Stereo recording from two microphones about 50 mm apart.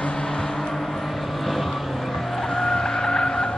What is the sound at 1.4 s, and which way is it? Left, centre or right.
Vehicle, centre.